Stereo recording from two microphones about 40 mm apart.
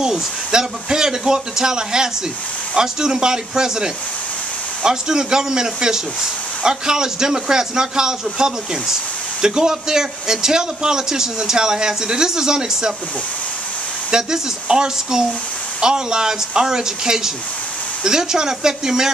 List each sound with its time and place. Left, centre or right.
0.0 s speech: centre
14.1 s speech: centre